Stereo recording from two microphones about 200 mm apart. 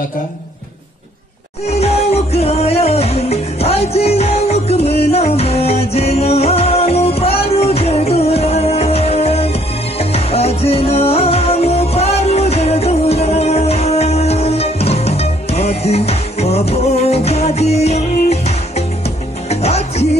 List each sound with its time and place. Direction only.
1.7 s music: 30° left (ahead or behind)